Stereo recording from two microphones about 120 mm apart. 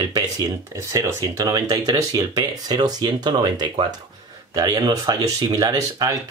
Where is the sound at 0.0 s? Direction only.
35° right (ahead or behind).